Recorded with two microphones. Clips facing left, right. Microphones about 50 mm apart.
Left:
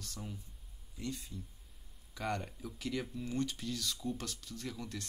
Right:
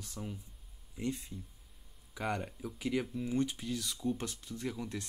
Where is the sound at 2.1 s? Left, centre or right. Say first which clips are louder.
Right 2 dB; centre.